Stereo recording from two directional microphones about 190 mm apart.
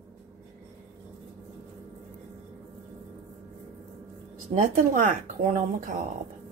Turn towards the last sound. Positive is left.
turn(degrees=-40)  # may be behind; listen again after turning